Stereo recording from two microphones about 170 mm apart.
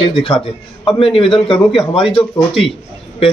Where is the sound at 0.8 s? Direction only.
30° left (ahead or behind).